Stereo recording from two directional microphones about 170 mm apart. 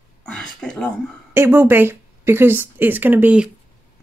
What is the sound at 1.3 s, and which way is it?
Speech, 15° right (ahead or behind).